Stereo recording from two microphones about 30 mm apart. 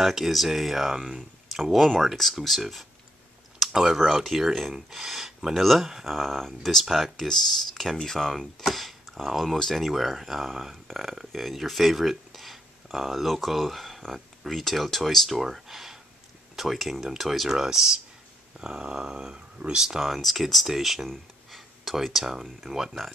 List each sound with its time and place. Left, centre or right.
0.0 s speech: centre
2.1 s speech: centre
3.5 s computer keyboard: centre
4.1 s speech: centre
6.0 s speech: centre
9.9 s speech: centre
14.1 s a sound: centre
14.6 s speech: centre
18.6 s a sound: right
20.2 s speech: centre
20.6 s speech: centre
21.5 s a sound: centre
21.9 s speech: centre